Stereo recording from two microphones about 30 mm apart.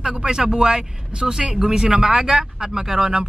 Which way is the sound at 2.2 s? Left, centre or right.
Centre.